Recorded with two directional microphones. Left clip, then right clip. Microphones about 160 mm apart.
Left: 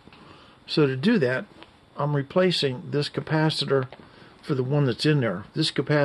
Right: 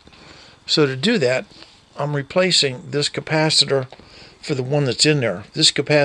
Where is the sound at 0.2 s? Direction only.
5° right (ahead or behind).